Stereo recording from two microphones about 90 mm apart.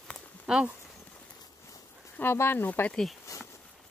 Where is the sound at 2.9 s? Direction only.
5° left (ahead or behind).